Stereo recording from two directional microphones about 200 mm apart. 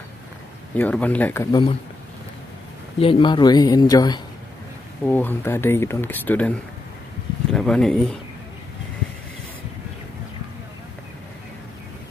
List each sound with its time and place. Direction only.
0.7 s speech: 10° left (ahead or behind)
3.0 s speech: 25° left (ahead or behind); by 6.5 s 10° left (ahead or behind)
7.5 s speech: 5° left (ahead or behind)